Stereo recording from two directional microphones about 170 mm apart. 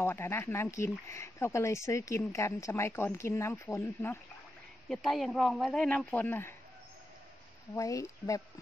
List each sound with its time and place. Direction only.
0.0 s speech: 15° left (ahead or behind)
4.8 s speech: centre (ahead or behind)
7.7 s speech: 20° left (ahead or behind)